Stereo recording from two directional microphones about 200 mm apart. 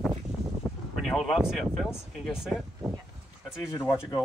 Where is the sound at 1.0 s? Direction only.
Centre (ahead or behind).